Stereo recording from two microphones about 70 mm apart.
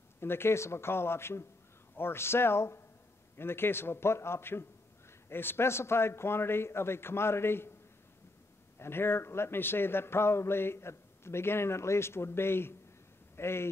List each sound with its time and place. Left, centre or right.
0.2 s a man's voice: left
8.7 s a man's voice: left